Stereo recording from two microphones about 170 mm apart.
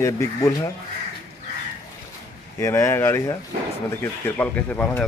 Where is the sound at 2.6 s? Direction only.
15° left (ahead or behind).